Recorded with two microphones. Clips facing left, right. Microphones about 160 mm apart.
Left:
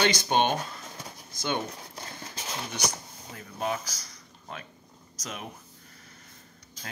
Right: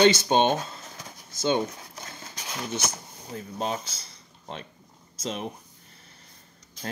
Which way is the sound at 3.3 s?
25° right (ahead or behind).